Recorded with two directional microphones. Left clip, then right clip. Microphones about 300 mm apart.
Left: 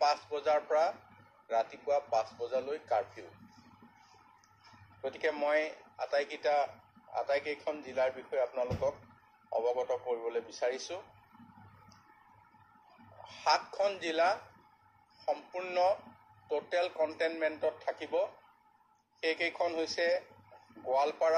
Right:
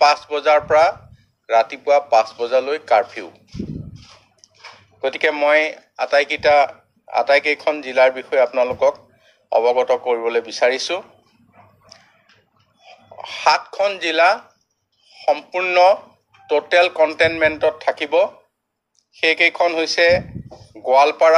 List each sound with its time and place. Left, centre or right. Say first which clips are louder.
0.0 s speech: right 16 dB; right
4.4 s speech: right 17 dB; right
13.2 s speech: right 14 dB; right